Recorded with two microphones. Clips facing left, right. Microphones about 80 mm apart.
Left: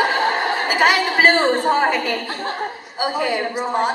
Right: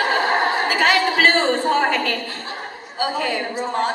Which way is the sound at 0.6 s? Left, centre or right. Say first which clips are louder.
Left 1 dB; centre.